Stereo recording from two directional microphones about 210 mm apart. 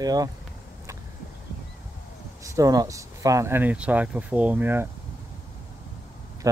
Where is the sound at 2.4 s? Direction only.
15° right (ahead or behind).